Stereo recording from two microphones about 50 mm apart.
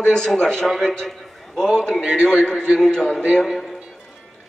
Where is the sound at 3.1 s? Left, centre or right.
Left.